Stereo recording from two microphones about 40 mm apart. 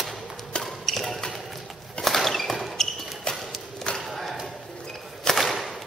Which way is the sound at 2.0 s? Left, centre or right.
Centre.